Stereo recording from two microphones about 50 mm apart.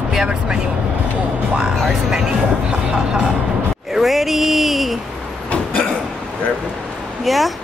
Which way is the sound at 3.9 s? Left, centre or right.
Centre.